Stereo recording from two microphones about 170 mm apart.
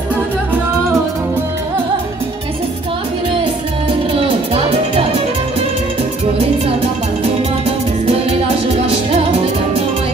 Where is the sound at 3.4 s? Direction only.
30° right (ahead or behind).